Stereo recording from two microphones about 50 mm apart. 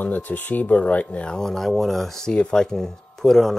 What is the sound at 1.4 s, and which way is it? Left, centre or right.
Speech, centre.